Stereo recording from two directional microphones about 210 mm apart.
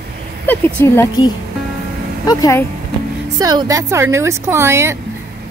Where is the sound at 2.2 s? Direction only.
15° left (ahead or behind).